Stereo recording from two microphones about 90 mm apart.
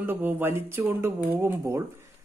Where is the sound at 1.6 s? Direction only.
35° right (ahead or behind).